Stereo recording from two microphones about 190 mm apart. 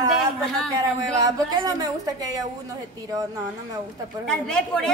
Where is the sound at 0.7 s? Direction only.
20° right (ahead or behind).